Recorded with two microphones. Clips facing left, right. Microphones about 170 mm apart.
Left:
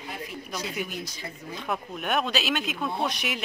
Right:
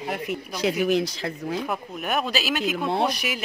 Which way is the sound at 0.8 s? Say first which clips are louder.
Right 13 dB; 80° right.